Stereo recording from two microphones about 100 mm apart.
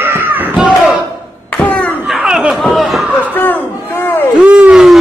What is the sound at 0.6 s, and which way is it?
Crowd, centre (ahead or behind).